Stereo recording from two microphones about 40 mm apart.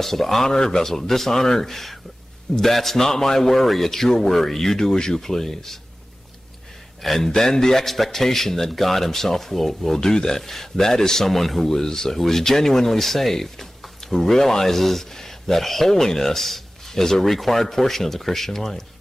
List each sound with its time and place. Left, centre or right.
0.0 s speech: centre
7.0 s speech: centre
9.9 s speech: centre